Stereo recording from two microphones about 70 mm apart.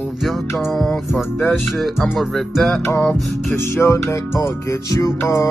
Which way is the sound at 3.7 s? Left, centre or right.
Left.